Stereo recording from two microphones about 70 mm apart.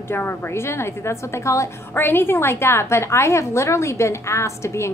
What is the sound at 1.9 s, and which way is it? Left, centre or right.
A woman's voice, left.